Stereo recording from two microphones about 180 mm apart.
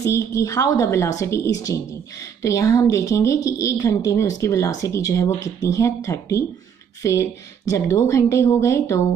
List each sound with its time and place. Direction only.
0.0 s speech: 15° left (ahead or behind)